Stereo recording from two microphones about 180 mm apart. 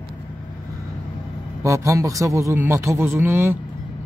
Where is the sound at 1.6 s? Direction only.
15° right (ahead or behind).